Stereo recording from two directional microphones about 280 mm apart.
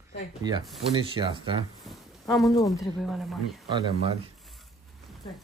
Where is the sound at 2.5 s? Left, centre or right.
Centre.